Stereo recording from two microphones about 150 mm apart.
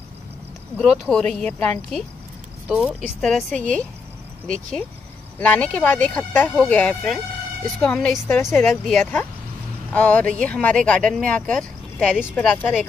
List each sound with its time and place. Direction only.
0.7 s speech: 5° left (ahead or behind)